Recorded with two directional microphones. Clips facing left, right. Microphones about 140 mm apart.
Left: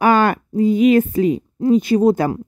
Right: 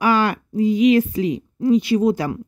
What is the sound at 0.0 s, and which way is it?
Speech, 50° left (ahead or behind).